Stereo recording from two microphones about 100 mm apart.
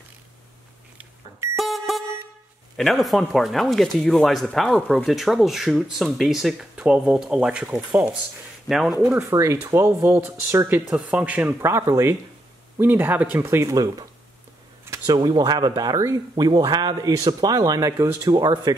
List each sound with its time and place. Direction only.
1.6 s vehicle horn: centre (ahead or behind)
2.8 s speech: centre (ahead or behind)
8.6 s speech: centre (ahead or behind)
9.3 s speech: 30° right (ahead or behind)
10.0 s speech: 25° right (ahead or behind)
10.9 s speech: 10° right (ahead or behind)
11.6 s speech: 30° right (ahead or behind)
15.0 s speech: 45° right (ahead or behind)